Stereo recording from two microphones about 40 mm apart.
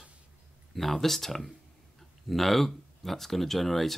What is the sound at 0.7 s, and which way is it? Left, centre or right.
Speech, centre.